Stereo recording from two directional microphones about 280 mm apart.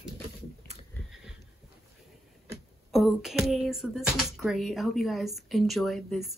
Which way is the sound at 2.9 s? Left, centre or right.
Centre.